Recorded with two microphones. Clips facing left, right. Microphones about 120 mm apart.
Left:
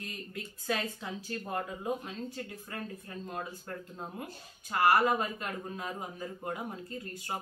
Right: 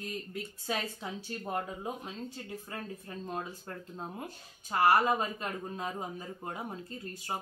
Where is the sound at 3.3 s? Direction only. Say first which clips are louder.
Right 1 dB; 15° right (ahead or behind).